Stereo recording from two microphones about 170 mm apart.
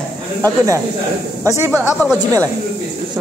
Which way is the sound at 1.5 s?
15° right (ahead or behind).